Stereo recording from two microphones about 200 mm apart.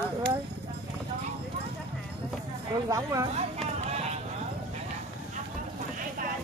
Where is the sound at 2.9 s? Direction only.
15° right (ahead or behind).